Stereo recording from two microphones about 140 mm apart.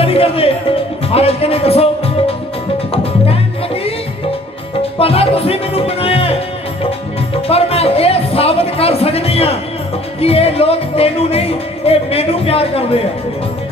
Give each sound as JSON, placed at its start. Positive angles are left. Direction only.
{"t": 0.0, "sound": "music", "side_deg": 45}
{"t": 4.9, "sound": "music", "side_deg": 45}
{"t": 7.4, "sound": "music", "side_deg": 45}